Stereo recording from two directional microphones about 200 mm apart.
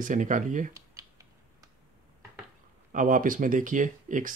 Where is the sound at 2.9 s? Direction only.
40° right (ahead or behind).